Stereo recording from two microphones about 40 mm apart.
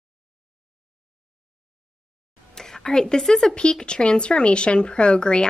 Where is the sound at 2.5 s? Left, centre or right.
Centre.